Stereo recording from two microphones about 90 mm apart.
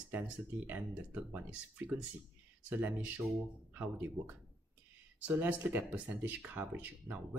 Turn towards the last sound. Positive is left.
turn(degrees=-20)  # may be behind; listen again after turning